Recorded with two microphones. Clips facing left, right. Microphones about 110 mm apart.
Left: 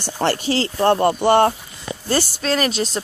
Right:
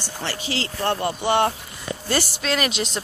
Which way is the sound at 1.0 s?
45° left (ahead or behind).